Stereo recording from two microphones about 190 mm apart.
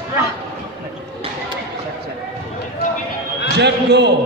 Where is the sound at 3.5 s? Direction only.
65° right (ahead or behind).